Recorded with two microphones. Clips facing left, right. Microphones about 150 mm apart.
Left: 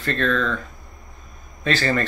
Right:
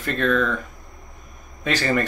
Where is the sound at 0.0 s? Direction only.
15° right (ahead or behind).